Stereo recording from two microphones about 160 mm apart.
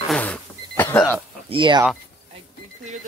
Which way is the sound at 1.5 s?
30° right (ahead or behind).